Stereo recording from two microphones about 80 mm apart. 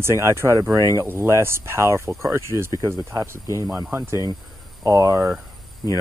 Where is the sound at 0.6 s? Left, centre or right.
Right.